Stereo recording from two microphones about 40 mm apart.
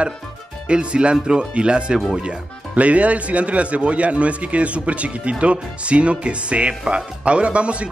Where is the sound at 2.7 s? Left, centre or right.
Right.